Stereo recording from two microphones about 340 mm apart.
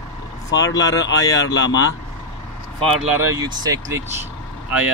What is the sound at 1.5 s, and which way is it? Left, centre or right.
Speech, left.